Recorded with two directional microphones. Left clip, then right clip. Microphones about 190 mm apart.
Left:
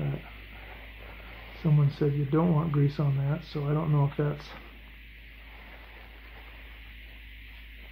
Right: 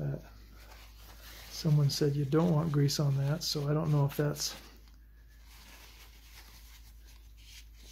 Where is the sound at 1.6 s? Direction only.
30° right (ahead or behind).